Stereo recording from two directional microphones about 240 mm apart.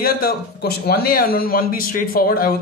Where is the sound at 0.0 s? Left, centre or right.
Left.